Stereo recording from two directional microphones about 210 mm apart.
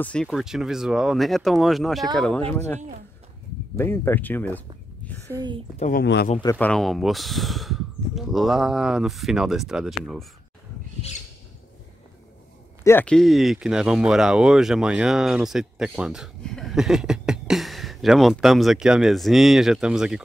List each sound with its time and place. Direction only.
0.0 s speech: 5° left (ahead or behind)
5.3 s a woman's voice: 20° right (ahead or behind)
5.8 s speech: 40° left (ahead or behind)
6.4 s speech: 10° left (ahead or behind)
12.8 s speech: 10° left (ahead or behind)